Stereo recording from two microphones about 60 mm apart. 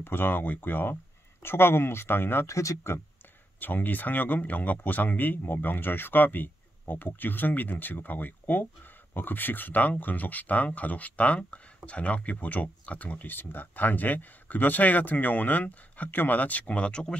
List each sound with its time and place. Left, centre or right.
0.0 s speech: left
2.4 s speech: left
3.5 s speech: left